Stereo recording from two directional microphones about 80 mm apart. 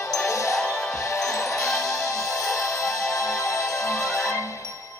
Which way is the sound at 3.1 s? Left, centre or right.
Left.